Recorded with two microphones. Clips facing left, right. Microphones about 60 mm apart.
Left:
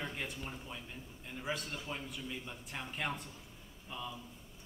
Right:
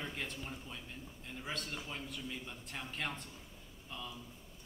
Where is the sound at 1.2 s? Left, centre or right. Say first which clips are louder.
Left 3 dB; centre.